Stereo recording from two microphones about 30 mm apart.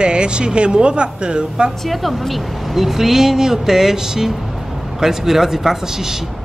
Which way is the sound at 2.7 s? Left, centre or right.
Centre.